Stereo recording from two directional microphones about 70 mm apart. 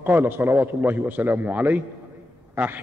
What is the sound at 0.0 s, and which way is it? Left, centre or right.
A man's voice, right.